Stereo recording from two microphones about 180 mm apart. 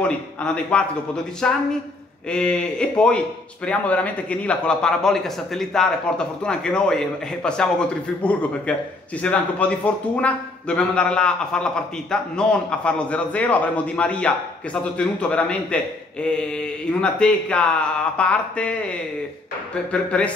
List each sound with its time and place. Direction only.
0.4 s a man's voice: 5° left (ahead or behind)